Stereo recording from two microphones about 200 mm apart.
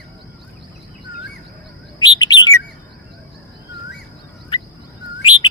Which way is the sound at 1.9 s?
20° left (ahead or behind).